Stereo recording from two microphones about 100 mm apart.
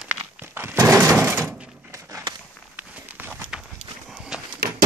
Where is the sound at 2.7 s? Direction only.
15° right (ahead or behind).